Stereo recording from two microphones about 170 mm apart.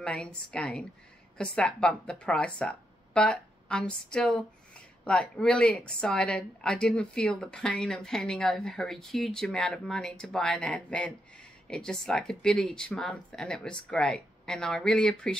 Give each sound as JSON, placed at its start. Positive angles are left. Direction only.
{"t": 0.0, "sound": "a woman's voice", "side_deg": 5}